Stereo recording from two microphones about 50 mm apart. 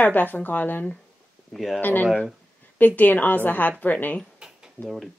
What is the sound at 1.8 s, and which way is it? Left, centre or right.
A woman's voice, left.